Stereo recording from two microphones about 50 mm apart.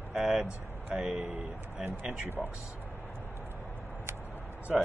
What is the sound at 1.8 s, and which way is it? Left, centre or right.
Speech, right.